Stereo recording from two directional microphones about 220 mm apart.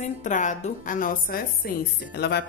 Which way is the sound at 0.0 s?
35° left (ahead or behind).